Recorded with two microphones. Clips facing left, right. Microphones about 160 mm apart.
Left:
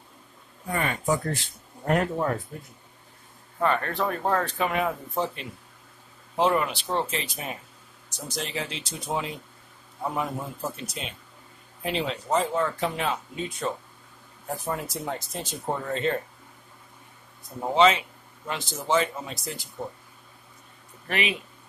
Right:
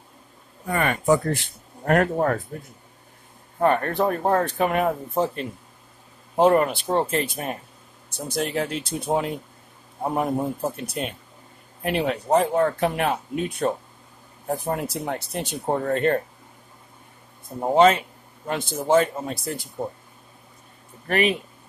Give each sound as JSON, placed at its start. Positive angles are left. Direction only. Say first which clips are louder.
{"t": 0.7, "sound": "speech", "louder": "right 6 dB", "side_deg": -65}
{"t": 3.6, "sound": "speech", "louder": "right 5 dB", "side_deg": -45}
{"t": 4.2, "sound": "speech", "louder": "right 3 dB", "side_deg": -35}
{"t": 4.5, "sound": "speech", "louder": "right 5 dB", "side_deg": -50}
{"t": 15.7, "sound": "speech", "louder": "right 6 dB", "side_deg": -55}
{"t": 17.7, "sound": "speech", "louder": "right 4 dB", "side_deg": -50}
{"t": 21.1, "sound": "speech", "louder": "right 7 dB", "side_deg": -45}